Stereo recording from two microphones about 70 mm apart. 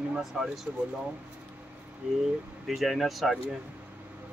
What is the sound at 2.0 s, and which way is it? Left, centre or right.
Speech, centre.